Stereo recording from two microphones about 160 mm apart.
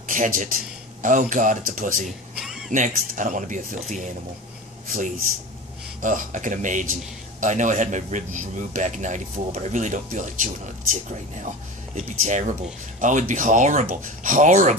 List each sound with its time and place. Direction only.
0.1 s a man's voice: 55° right (ahead or behind)
2.0 s a sound: centre (ahead or behind)
2.7 s a man's voice: 55° right (ahead or behind)